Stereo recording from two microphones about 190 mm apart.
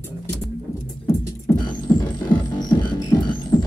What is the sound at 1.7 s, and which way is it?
Music, 20° left (ahead or behind).